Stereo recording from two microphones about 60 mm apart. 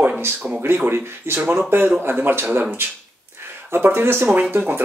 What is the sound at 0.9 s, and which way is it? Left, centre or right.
Speech, right.